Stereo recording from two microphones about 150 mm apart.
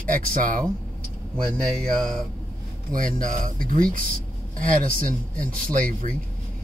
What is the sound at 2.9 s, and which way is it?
Speech, 60° right (ahead or behind).